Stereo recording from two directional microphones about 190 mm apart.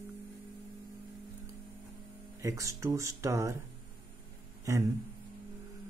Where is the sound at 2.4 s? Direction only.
15° right (ahead or behind).